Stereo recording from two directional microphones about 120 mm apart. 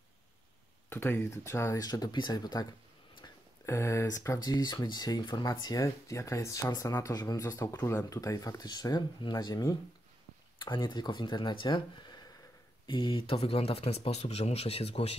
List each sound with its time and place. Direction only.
0.8 s speech: 20° left (ahead or behind); by 2.7 s 35° left (ahead or behind)
3.6 s speech: 20° left (ahead or behind)
10.6 s speech: 40° left (ahead or behind); by 15.1 s 55° left (ahead or behind)